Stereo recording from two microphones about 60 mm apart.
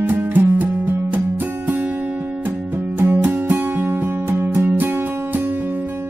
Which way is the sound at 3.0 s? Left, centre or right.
Right.